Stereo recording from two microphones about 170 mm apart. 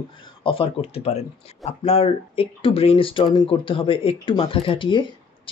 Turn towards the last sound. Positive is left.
turn(degrees=30)  # may be behind; listen again after turning